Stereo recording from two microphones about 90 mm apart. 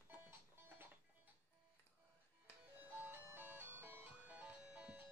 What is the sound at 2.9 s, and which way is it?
Music, 25° right (ahead or behind).